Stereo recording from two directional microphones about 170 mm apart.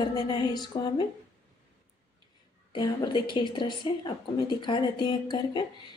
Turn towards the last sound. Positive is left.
turn(degrees=25)  # may be behind; listen again after turning